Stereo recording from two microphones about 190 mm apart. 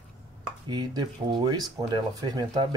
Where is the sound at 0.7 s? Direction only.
25° right (ahead or behind).